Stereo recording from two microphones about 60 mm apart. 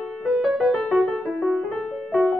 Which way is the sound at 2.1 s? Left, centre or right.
Centre.